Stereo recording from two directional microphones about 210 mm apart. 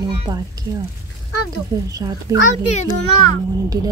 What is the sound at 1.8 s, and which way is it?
Speech, 15° right (ahead or behind).